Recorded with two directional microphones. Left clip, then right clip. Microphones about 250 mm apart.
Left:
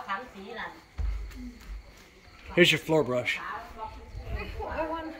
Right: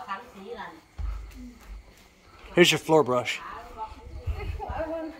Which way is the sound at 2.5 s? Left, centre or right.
Centre.